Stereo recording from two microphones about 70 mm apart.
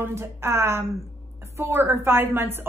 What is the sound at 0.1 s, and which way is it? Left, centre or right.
A woman's voice, right.